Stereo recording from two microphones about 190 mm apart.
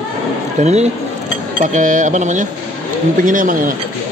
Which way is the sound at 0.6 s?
35° right (ahead or behind).